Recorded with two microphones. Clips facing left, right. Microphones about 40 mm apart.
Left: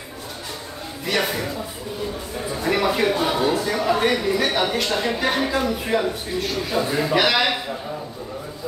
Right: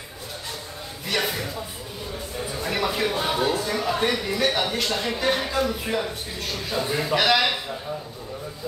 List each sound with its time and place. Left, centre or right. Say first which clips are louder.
1.0 s speech: left 3 dB; centre
2.6 s speech: left 5 dB; centre